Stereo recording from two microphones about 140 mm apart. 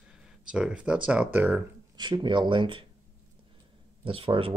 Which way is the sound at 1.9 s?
30° right (ahead or behind).